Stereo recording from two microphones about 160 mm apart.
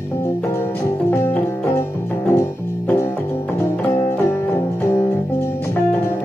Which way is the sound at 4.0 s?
20° left (ahead or behind).